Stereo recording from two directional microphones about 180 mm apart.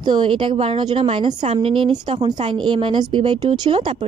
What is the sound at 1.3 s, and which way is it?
A woman's voice, 40° right (ahead or behind).